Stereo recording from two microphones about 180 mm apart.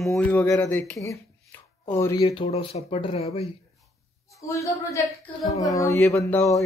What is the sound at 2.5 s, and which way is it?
Speech, 35° left (ahead or behind).